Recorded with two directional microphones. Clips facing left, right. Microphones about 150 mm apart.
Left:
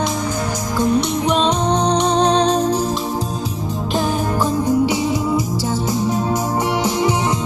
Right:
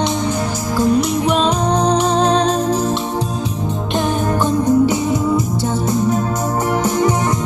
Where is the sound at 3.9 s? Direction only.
Centre (ahead or behind).